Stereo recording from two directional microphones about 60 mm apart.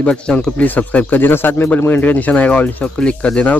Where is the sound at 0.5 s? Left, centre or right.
Left.